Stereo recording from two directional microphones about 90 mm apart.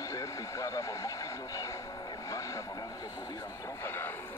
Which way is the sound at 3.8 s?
25° left (ahead or behind).